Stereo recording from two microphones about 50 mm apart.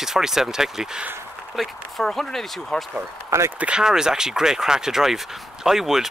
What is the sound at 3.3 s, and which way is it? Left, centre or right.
Speech, right.